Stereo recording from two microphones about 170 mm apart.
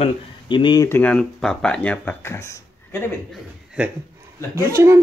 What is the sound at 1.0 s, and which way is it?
Speech, 5° left (ahead or behind).